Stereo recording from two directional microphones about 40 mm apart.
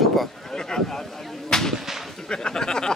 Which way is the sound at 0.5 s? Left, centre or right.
Centre.